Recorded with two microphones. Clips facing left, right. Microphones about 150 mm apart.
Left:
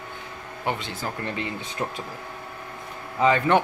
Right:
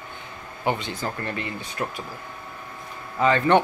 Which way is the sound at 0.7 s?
Centre (ahead or behind).